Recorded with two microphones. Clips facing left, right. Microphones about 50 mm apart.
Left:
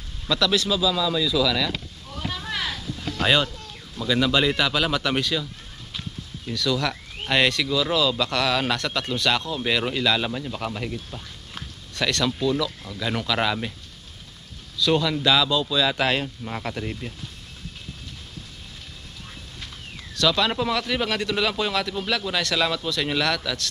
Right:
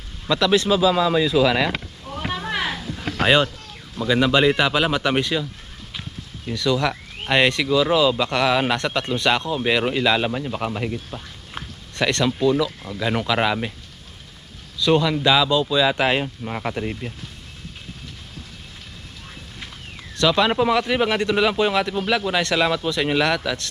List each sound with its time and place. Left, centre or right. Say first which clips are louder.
0.3 s speech: right 4 dB; right
2.1 s a sound: right 4 dB; right
4.0 s speech: right 4 dB; centre
14.9 s speech: right 3 dB; centre
20.2 s speech: right 4 dB; centre